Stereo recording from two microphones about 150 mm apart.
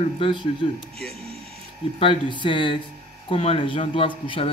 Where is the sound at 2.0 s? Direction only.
35° left (ahead or behind).